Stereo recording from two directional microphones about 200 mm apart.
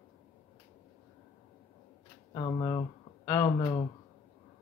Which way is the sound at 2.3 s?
20° left (ahead or behind).